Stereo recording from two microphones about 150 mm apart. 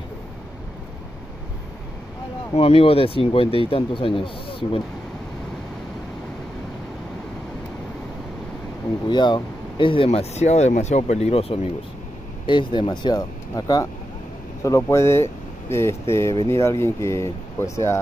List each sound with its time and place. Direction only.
2.5 s speech: 40° left (ahead or behind)
9.1 s speech: 30° left (ahead or behind)